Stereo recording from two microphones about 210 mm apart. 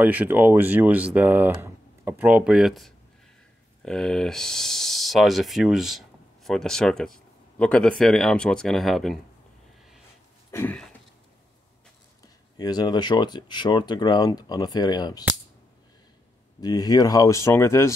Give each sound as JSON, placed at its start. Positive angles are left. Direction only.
{"t": 0.0, "sound": "speech", "side_deg": -10}
{"t": 10.5, "sound": "a sound", "side_deg": 10}
{"t": 12.5, "sound": "speech", "side_deg": 20}
{"t": 16.6, "sound": "speech", "side_deg": 20}